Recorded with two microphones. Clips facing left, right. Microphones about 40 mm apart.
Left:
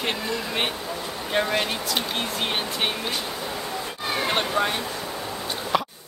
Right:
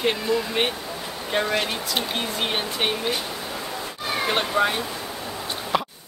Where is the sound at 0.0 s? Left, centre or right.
Centre.